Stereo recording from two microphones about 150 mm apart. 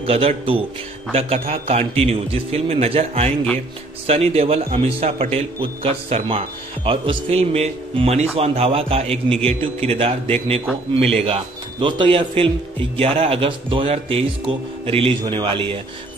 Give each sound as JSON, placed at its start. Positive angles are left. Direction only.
{"t": 0.0, "sound": "a man's voice", "side_deg": -40}